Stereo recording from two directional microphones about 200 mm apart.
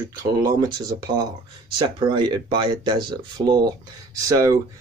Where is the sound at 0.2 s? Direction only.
20° right (ahead or behind).